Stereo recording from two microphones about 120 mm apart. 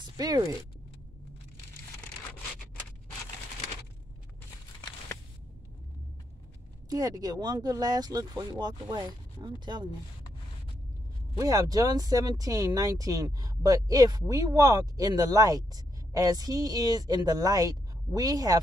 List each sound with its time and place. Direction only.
0.0 s speech: 30° right (ahead or behind)
6.9 s speech: 30° right (ahead or behind)
11.3 s speech: 30° right (ahead or behind)